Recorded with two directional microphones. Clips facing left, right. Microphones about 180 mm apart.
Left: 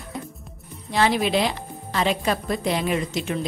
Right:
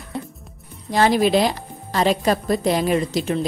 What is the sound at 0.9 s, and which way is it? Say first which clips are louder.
Speech: right 4 dB; 40° right (ahead or behind).